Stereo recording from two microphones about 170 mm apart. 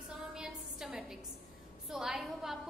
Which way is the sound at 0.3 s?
5° right (ahead or behind).